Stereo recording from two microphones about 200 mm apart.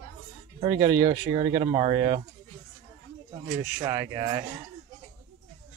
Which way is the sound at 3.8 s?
15° right (ahead or behind).